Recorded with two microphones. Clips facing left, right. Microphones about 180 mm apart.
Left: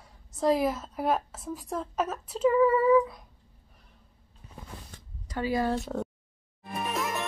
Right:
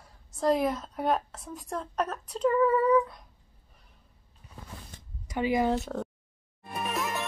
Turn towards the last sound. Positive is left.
turn(degrees=0)  # may be behind; listen again after turning